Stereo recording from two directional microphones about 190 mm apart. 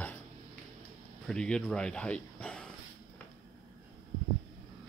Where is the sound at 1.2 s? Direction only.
5° left (ahead or behind).